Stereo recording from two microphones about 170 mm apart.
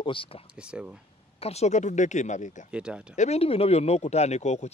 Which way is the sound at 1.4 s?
40° left (ahead or behind).